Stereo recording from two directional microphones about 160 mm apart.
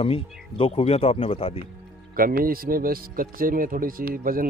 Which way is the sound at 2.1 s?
65° right (ahead or behind).